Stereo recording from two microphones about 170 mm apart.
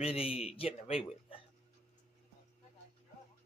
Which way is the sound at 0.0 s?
35° left (ahead or behind).